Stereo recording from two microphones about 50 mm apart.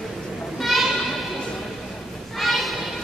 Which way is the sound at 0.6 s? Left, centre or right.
Centre.